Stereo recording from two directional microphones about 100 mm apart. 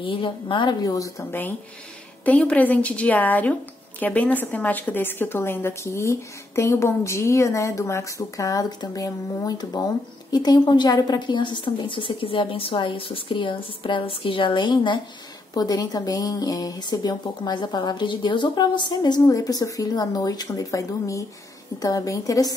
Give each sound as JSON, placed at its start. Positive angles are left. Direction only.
{"t": 0.0, "sound": "a woman's voice", "side_deg": 60}
{"t": 0.8, "sound": "a woman's voice", "side_deg": 35}
{"t": 2.2, "sound": "a woman's voice", "side_deg": 15}